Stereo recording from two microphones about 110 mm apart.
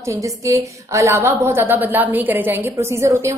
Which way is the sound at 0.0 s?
25° right (ahead or behind).